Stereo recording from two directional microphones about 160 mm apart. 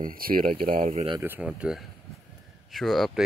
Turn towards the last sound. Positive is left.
turn(degrees=0)  # may be behind; listen again after turning